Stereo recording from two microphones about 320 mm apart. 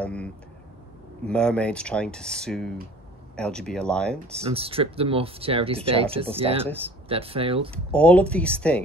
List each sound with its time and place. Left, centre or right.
0.0 s a sound: centre
1.2 s speech: centre
4.5 s speech: centre
7.7 s speech: centre